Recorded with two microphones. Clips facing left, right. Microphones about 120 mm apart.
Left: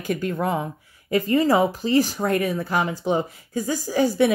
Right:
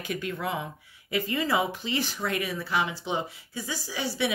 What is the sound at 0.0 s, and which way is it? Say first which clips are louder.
Speech: left 7 dB; 45° left (ahead or behind).